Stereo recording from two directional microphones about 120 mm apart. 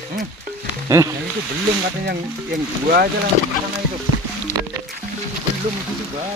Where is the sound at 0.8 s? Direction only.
25° right (ahead or behind).